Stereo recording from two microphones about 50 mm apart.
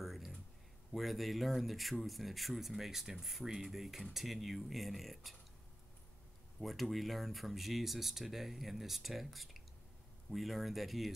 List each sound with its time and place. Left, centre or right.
0.0 s a sound: centre
0.9 s speech: centre
6.6 s speech: centre